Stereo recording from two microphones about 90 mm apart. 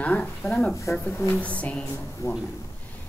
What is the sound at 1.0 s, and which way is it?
Speech, 30° left (ahead or behind).